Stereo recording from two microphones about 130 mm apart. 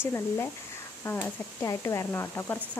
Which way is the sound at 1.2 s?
25° left (ahead or behind).